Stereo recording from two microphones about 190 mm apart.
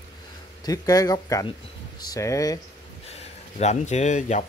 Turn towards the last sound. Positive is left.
turn(degrees=40)  # may be behind; listen again after turning